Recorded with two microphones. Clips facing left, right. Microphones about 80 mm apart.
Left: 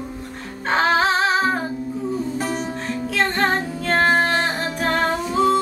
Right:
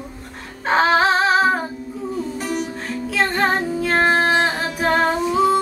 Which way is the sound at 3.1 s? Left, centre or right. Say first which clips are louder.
Right 1 dB; centre.